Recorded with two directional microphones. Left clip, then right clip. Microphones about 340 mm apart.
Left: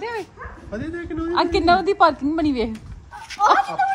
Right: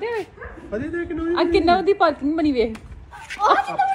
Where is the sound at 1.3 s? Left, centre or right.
Centre.